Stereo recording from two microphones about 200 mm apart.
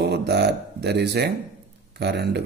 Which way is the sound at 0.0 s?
55° right (ahead or behind).